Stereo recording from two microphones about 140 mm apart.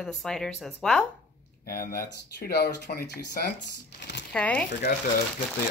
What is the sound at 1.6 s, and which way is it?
Speech, 90° left.